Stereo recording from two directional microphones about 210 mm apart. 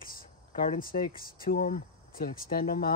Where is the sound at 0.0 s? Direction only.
40° left (ahead or behind).